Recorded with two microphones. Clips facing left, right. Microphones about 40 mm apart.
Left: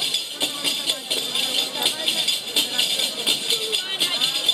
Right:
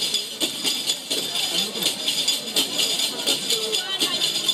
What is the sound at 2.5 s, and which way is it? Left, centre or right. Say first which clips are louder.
Music: left 2 dB; centre.